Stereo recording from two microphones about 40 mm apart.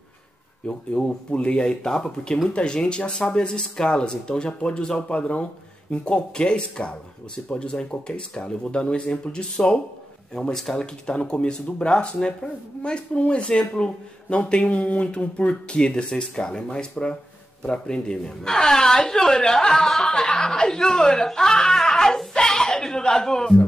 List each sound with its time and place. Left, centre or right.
0.7 s speech: left